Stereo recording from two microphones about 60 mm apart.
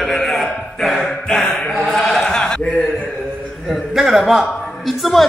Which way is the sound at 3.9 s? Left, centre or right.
Centre.